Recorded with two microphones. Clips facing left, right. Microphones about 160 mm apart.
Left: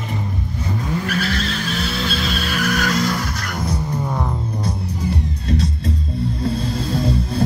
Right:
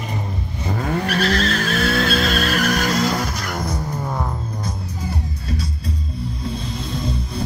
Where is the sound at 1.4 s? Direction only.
50° right (ahead or behind).